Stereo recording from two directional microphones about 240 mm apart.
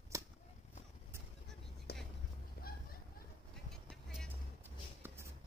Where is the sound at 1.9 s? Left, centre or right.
Left.